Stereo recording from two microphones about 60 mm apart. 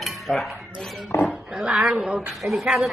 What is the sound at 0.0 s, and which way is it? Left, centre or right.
Speech, centre.